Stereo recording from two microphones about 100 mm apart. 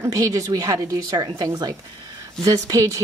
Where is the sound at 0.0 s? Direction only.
35° right (ahead or behind).